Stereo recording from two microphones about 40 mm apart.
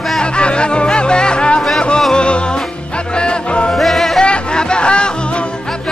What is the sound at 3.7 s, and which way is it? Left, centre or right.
Music, centre.